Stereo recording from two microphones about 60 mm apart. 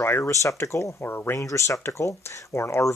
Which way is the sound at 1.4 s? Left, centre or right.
Left.